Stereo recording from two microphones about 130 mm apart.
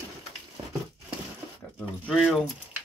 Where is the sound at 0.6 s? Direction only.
45° right (ahead or behind).